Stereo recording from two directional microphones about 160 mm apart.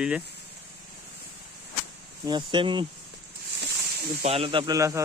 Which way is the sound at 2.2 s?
30° right (ahead or behind).